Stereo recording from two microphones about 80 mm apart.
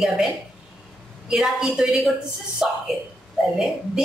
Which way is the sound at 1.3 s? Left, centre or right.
Centre.